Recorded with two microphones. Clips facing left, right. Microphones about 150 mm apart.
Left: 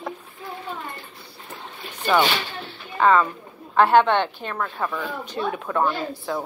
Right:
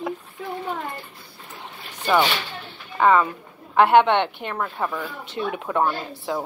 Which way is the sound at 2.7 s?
15° right (ahead or behind).